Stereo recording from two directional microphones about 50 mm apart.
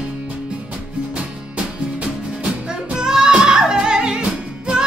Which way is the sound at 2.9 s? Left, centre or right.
Centre.